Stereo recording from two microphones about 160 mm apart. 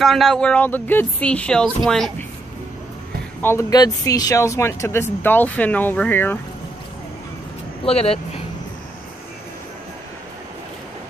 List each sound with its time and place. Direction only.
0.0 s speech: centre (ahead or behind)
3.4 s speech: 20° left (ahead or behind)
7.8 s speech: 40° left (ahead or behind)